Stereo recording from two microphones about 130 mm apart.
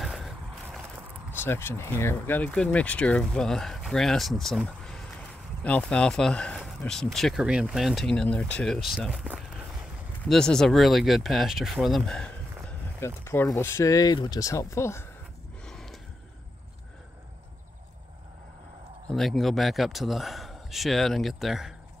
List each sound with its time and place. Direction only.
0.0 s vehicle: 5° right (ahead or behind)
1.3 s speech: 15° left (ahead or behind)
13.0 s speech: 20° left (ahead or behind)
15.6 s a sound: 5° left (ahead or behind)
19.0 s speech: centre (ahead or behind)